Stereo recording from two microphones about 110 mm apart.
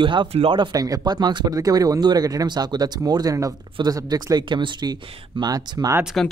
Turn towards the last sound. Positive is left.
turn(degrees=5)  # may be behind; listen again after turning